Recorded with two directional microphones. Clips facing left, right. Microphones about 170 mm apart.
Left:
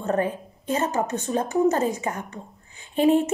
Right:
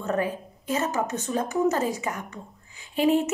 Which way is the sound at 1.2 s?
30° left (ahead or behind).